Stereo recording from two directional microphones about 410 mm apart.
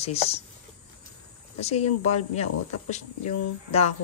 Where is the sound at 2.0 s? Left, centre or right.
Centre.